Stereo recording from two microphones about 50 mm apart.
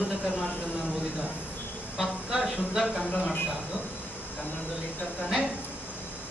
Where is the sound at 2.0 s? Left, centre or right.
Centre.